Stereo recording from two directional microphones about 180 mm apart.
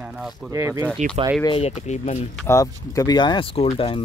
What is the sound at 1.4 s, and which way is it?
Speech, 30° left (ahead or behind).